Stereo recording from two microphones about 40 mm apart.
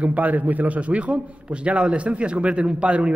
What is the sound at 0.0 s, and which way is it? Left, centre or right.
A man's voice, right.